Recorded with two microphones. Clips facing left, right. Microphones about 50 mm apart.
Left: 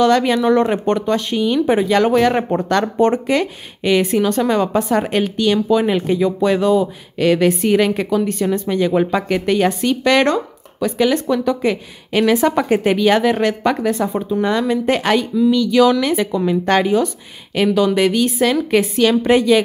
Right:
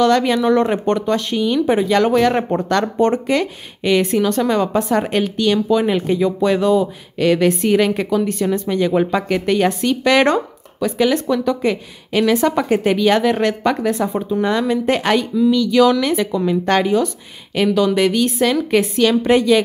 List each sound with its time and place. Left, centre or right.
0.0 s speech: centre
12.1 s speech: left